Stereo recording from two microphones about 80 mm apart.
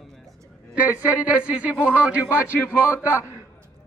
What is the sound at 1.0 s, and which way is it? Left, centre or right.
A man's voice, centre.